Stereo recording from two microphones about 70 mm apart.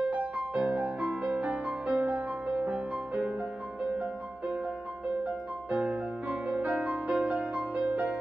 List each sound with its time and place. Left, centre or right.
0.4 s music: centre
5.7 s music: centre